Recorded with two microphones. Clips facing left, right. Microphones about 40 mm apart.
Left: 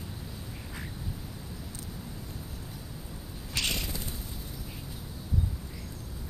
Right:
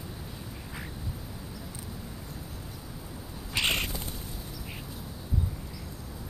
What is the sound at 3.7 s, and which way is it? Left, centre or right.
Cat, right.